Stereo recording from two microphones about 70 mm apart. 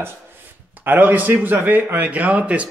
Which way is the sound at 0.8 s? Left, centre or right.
Right.